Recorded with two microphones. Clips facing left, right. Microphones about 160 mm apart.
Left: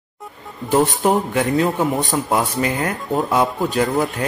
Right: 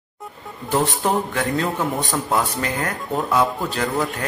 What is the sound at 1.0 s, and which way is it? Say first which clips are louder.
A man's voice: left 4 dB; 20° left (ahead or behind).